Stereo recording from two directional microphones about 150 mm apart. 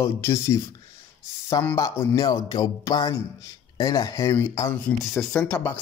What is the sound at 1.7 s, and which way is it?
Speech, 20° left (ahead or behind).